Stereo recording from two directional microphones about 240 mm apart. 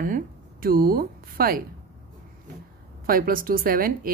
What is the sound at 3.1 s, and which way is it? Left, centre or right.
Speech, right.